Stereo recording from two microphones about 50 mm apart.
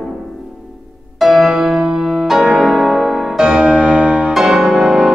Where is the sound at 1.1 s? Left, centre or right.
Centre.